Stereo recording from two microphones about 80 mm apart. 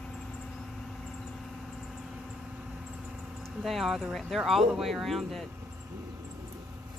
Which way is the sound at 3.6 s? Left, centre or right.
Centre.